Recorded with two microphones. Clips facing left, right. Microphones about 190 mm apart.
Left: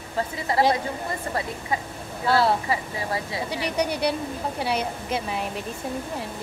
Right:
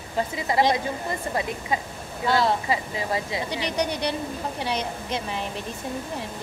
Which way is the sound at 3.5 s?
5° left (ahead or behind).